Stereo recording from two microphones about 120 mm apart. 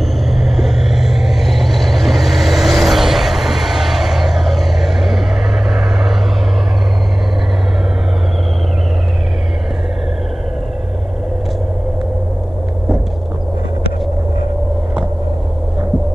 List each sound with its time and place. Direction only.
0.3 s vehicle: centre (ahead or behind)